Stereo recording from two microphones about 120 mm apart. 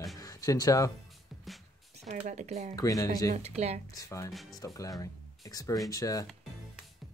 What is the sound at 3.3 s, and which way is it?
Speech, 65° right (ahead or behind).